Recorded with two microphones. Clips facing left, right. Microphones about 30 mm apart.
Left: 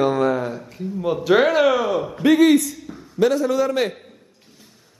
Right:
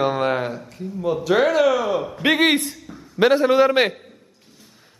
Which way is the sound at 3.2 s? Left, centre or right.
Right.